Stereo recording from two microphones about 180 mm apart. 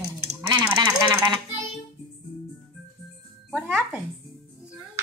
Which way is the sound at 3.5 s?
5° right (ahead or behind).